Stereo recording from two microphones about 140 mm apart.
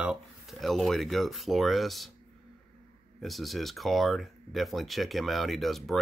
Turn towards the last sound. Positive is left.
turn(degrees=0)  # may be behind; listen again after turning